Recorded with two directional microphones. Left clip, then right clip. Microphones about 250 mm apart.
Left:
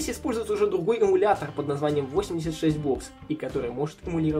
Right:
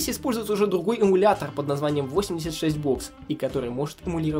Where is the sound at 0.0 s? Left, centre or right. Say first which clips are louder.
Right 1 dB; right.